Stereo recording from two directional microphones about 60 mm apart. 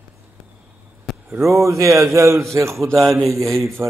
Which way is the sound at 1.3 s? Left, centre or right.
Right.